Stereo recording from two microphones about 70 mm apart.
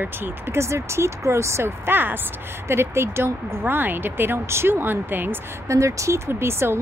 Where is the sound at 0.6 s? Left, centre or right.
Right.